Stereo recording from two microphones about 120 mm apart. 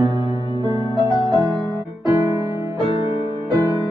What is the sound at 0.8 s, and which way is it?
Music, 35° left (ahead or behind).